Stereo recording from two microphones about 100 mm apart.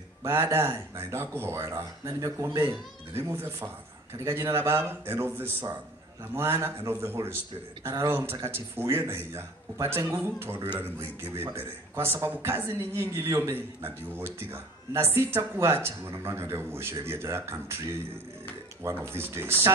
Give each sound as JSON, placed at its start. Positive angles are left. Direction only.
{"t": 0.2, "sound": "speech", "side_deg": -25}
{"t": 18.8, "sound": "speech", "side_deg": -25}